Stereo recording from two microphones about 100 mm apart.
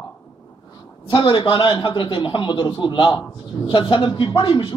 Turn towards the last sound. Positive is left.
turn(degrees=50)  # may be behind; listen again after turning